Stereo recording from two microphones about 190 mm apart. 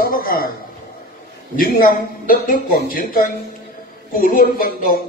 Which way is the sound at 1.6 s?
50° left (ahead or behind).